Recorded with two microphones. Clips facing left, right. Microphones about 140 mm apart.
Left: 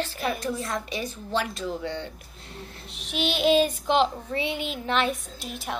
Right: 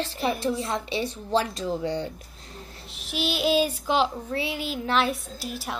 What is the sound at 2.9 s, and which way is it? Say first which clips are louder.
Child singing: left 1 dB; 5° right (ahead or behind).